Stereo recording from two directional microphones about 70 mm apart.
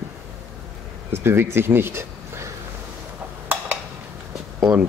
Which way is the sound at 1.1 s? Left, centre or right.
Right.